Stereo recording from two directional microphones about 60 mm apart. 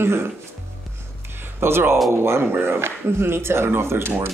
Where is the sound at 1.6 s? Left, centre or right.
Right.